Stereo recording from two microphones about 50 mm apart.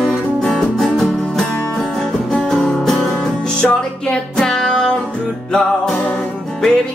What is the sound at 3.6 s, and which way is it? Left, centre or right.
Music, centre.